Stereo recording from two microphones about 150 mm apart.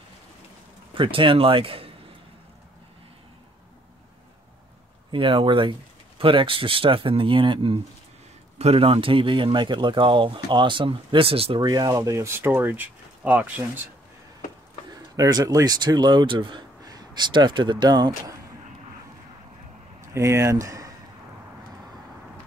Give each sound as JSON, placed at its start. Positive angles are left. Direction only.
{"t": 0.9, "sound": "speech", "side_deg": -35}
{"t": 5.1, "sound": "speech", "side_deg": -35}
{"t": 14.9, "sound": "speech", "side_deg": -25}
{"t": 20.2, "sound": "speech", "side_deg": -20}